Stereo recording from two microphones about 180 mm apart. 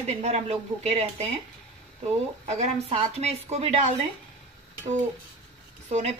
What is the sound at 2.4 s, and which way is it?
A woman's voice, 40° right (ahead or behind).